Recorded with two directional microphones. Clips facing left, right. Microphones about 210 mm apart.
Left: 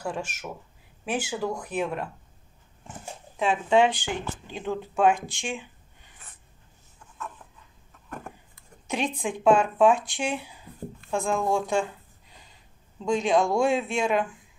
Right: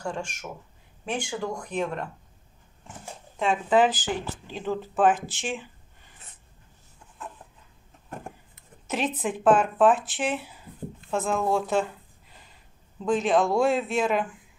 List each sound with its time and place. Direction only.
0.0 s speech: 5° left (ahead or behind)
3.3 s speech: centre (ahead or behind)
8.1 s a sound: 25° right (ahead or behind)
8.8 s speech: 5° right (ahead or behind)
13.0 s speech: 5° right (ahead or behind)